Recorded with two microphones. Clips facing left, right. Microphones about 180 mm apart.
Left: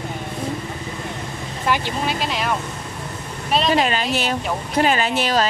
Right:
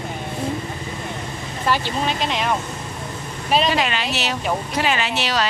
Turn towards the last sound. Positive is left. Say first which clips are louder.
# left 3 dB
turn(degrees=45)  # may be behind; listen again after turning